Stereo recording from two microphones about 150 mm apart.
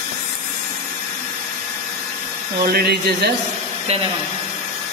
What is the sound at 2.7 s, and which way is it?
Speech, 90° right.